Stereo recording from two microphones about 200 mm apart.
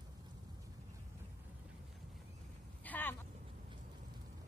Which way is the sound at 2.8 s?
10° left (ahead or behind).